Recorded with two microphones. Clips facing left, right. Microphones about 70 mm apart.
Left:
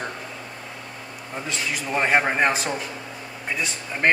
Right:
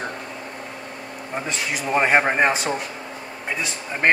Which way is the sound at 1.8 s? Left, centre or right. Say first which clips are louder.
Right 3 dB; centre.